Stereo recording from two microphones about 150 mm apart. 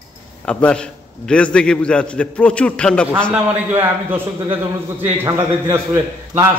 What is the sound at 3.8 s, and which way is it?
A man's voice, 15° right (ahead or behind).